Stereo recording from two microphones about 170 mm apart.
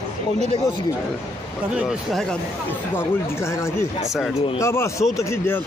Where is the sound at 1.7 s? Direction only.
5° right (ahead or behind).